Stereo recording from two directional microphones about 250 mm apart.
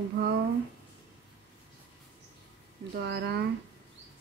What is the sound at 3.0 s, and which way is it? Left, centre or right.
Speech, right.